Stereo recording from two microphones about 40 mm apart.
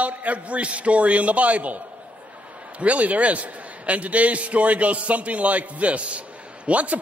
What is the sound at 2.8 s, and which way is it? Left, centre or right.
A man's voice, right.